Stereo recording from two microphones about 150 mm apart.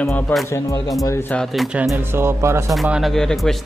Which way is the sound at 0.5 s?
20° left (ahead or behind).